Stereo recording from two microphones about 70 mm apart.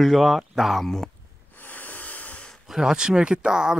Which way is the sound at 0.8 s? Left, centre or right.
Centre.